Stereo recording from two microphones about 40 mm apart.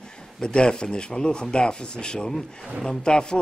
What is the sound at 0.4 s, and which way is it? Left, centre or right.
Speech, left.